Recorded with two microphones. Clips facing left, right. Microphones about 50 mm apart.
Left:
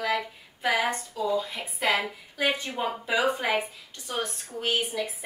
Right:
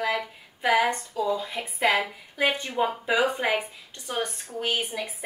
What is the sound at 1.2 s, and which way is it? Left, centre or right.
Speech, centre.